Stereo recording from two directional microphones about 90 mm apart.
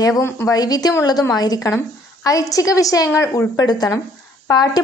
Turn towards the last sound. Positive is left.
turn(degrees=45)  # may be behind; listen again after turning